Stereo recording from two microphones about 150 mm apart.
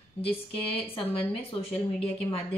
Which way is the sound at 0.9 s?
40° left (ahead or behind).